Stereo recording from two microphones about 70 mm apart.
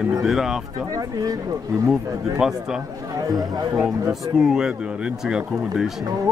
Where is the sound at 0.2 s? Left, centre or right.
Centre.